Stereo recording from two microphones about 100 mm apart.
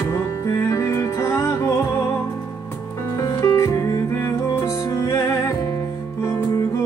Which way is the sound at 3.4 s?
30° left (ahead or behind).